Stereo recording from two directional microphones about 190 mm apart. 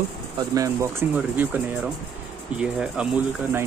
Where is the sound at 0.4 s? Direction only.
15° right (ahead or behind).